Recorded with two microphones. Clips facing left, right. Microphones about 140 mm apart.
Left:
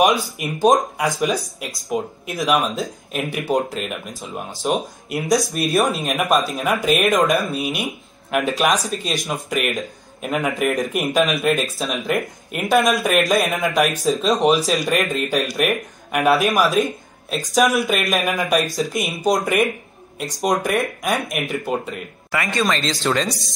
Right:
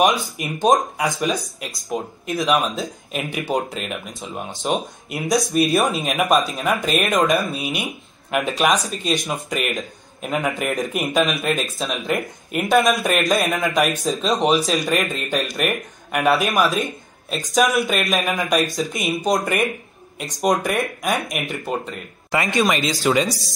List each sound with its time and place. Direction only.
0.0 s speech: centre (ahead or behind)
22.3 s speech: 20° right (ahead or behind)
22.8 s speech: 5° right (ahead or behind)